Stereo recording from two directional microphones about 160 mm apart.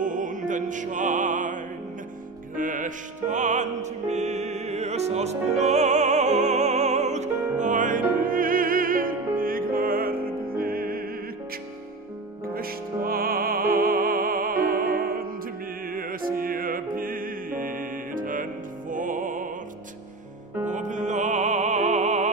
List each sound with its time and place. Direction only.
0.0 s music: 55° right (ahead or behind)
12.5 s music: 65° right (ahead or behind)
20.6 s music: 50° right (ahead or behind)